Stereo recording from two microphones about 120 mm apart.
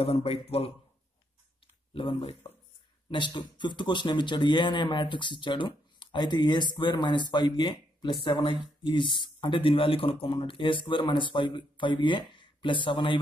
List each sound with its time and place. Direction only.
0.0 s speech: 55° left (ahead or behind)
2.0 s speech: 50° left (ahead or behind)
3.1 s speech: 40° left (ahead or behind)